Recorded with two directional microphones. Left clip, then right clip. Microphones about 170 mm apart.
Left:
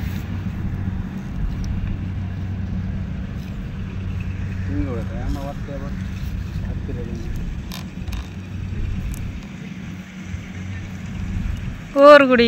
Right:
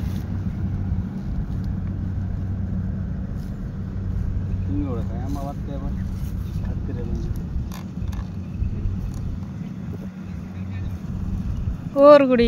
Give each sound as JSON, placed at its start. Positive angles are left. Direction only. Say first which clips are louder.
{"t": 11.9, "sound": "speech", "louder": "left 3 dB", "side_deg": -5}